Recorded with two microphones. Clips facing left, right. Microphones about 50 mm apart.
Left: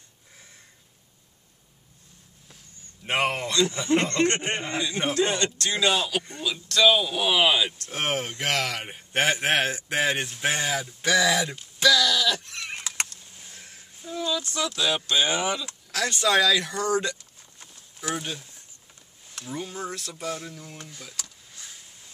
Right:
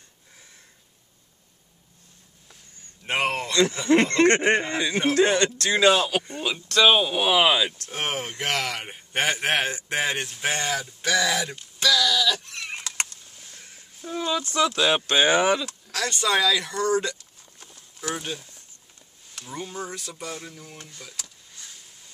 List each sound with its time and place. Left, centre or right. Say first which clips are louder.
3.1 s a man's voice: even; centre
4.0 s speech: right 5 dB; right
7.9 s a man's voice: left 1 dB; centre
13.4 s a sound: left 1 dB; centre
14.1 s speech: right 3 dB; right
15.9 s a man's voice: left 1 dB; centre
17.2 s a sound: even; centre
18.1 s a man's voice: left 2 dB; centre